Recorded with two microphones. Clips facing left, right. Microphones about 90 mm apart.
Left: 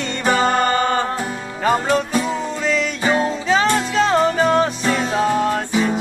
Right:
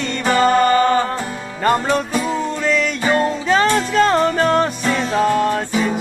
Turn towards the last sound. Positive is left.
turn(degrees=0)  # may be behind; listen again after turning